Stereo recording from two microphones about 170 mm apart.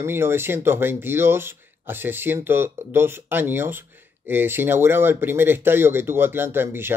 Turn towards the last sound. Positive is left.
turn(degrees=-15)  # may be behind; listen again after turning